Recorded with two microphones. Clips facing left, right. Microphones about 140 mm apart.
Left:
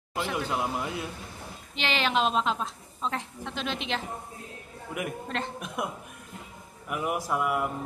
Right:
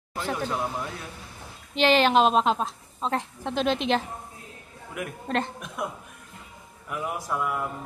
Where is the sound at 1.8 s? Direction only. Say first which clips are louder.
Right 8 dB; 40° right (ahead or behind).